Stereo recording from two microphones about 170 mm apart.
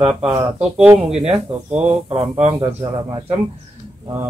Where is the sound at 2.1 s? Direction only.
35° right (ahead or behind).